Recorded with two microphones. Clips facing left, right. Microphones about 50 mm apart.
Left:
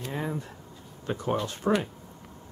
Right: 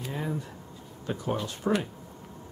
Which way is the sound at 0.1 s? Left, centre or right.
Centre.